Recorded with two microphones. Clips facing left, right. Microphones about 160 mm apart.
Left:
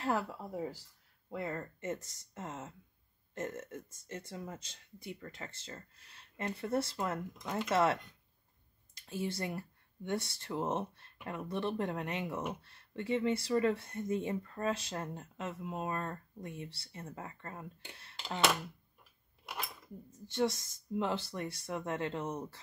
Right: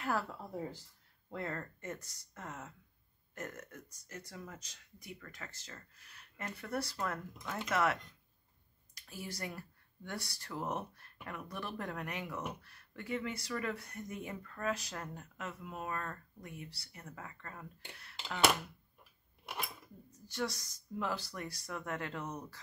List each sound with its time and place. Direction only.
0.0 s speech: 25° left (ahead or behind)
0.3 s speech: 10° left (ahead or behind); by 18.4 s 25° left (ahead or behind)
20.1 s speech: 25° left (ahead or behind)